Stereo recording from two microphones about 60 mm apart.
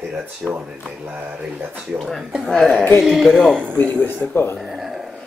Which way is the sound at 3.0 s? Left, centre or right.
Centre.